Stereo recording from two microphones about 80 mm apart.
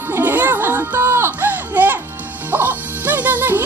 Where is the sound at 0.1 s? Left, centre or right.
Right.